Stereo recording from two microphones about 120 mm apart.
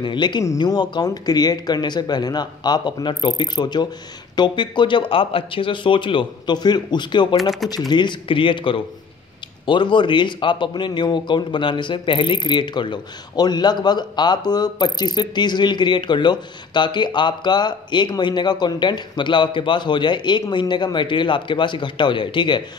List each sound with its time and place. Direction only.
0.0 s speech: 40° left (ahead or behind)